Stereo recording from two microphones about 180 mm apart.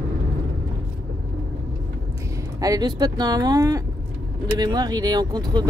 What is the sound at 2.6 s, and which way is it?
Speech, 20° right (ahead or behind).